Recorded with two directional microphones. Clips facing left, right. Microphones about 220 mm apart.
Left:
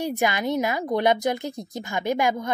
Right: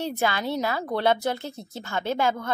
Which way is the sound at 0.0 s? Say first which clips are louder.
Left 2 dB; 15° left (ahead or behind).